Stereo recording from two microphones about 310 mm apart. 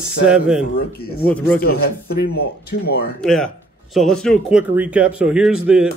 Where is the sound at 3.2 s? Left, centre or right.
Centre.